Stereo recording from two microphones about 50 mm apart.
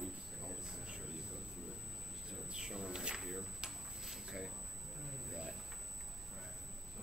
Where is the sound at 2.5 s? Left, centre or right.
Centre.